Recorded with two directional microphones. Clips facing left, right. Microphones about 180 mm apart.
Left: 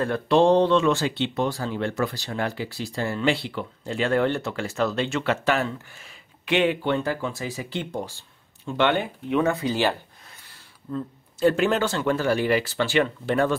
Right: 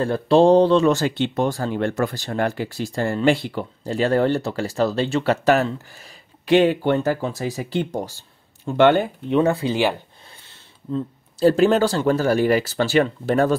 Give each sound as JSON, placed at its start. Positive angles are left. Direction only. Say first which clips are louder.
{"t": 0.0, "sound": "speech", "louder": "right 4 dB", "side_deg": -30}
{"t": 9.3, "sound": "speech", "louder": "right 4 dB", "side_deg": -30}
{"t": 10.9, "sound": "speech", "louder": "right 5 dB", "side_deg": -35}